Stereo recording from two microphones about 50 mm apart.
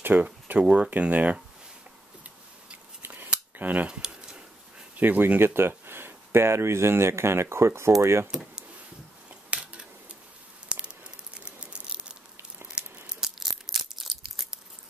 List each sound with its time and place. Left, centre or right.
0.0 s a sound: right
0.8 s speech: right
3.2 s scissors: right
3.8 s a sound: centre
4.9 s speech: right
5.2 s speech: right
8.3 s speech: centre
9.3 s a sound: right
13.7 s crunch: centre